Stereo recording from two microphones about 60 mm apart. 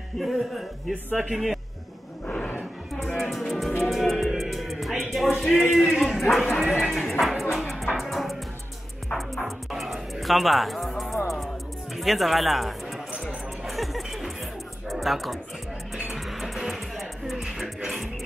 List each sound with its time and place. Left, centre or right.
0.2 s a man's voice: centre
2.2 s a sound: centre
3.2 s music: centre
5.5 s a sound: centre
6.6 s music: centre
9.4 s music: centre